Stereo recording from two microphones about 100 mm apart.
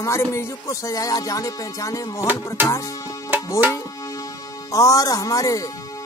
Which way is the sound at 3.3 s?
20° right (ahead or behind).